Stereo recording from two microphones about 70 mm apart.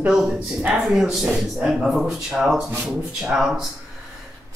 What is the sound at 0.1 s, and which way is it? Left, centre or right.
Speech, centre.